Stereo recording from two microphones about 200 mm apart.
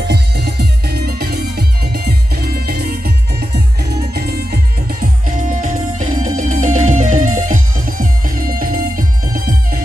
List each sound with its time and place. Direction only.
0.1 s music: 55° right (ahead or behind)
5.6 s music: 40° right (ahead or behind)